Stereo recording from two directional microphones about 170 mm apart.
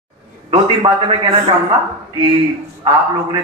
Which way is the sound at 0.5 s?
30° right (ahead or behind).